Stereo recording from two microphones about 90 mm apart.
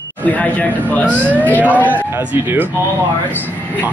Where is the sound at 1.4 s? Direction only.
15° left (ahead or behind).